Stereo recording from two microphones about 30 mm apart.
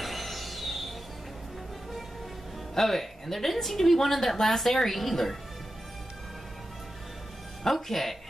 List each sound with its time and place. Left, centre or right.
0.0 s a sound: centre
2.7 s a woman's voice: centre
7.6 s a woman's voice: centre